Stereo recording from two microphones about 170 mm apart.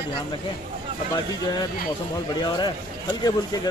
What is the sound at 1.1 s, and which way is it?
Speech, 25° left (ahead or behind).